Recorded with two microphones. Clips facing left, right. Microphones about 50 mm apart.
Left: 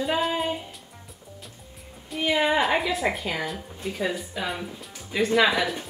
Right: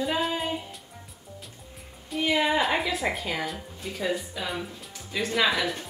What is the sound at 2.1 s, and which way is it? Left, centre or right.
Speech, centre.